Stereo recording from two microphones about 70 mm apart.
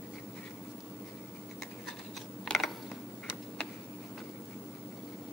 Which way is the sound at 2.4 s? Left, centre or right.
Centre.